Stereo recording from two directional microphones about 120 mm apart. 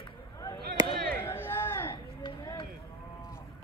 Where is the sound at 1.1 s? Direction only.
20° left (ahead or behind).